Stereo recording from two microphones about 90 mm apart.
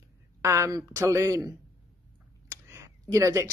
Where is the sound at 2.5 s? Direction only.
35° right (ahead or behind).